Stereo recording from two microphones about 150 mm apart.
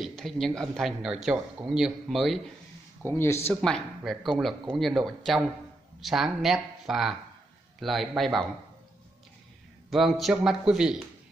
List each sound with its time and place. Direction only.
0.0 s speech: centre (ahead or behind)
3.1 s speech: 15° left (ahead or behind)
3.6 s speech: 5° left (ahead or behind)
9.8 s speech: centre (ahead or behind)